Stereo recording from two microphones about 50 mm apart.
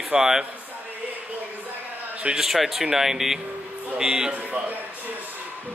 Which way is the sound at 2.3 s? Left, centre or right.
Centre.